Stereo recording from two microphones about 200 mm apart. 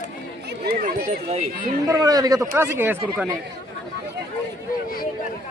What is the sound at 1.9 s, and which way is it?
Speech, 15° right (ahead or behind).